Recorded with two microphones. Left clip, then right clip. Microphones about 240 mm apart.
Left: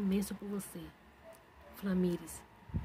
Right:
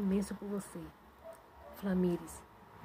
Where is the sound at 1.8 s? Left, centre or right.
Centre.